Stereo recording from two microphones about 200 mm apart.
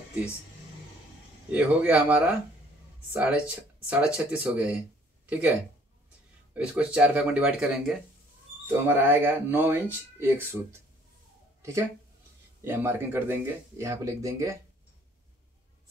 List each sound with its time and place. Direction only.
1.5 s speech: 5° right (ahead or behind)
12.6 s speech: 10° right (ahead or behind)